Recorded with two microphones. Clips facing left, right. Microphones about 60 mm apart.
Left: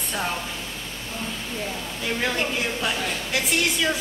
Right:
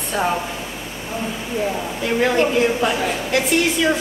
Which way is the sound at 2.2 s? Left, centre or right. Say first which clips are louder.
Right 10 dB; centre.